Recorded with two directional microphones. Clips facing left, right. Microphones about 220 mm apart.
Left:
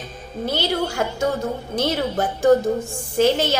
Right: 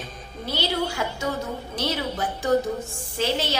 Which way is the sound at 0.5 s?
50° left (ahead or behind).